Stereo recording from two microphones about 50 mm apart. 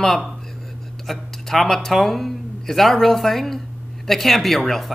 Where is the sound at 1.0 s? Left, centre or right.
Centre.